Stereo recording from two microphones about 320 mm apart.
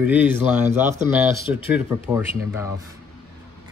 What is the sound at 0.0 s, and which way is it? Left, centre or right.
A man's voice, centre.